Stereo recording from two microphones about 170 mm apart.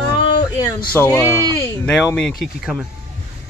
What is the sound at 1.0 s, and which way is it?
Speech, 15° left (ahead or behind).